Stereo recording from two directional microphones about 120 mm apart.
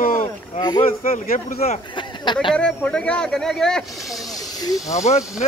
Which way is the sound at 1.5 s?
60° left (ahead or behind).